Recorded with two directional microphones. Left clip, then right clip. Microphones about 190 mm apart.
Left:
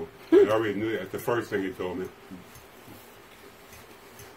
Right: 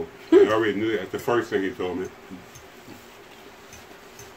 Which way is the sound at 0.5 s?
20° left (ahead or behind).